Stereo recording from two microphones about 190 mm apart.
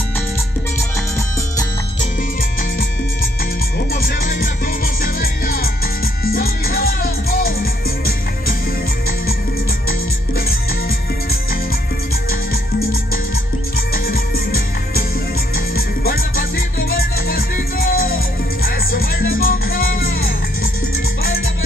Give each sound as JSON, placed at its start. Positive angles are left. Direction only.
{"t": 3.9, "sound": "music", "side_deg": 45}
{"t": 12.3, "sound": "music", "side_deg": 50}